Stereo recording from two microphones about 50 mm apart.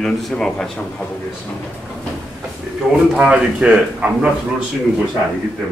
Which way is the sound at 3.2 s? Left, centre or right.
Centre.